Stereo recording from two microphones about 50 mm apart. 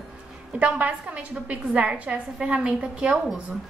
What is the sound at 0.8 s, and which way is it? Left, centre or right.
A woman's voice, right.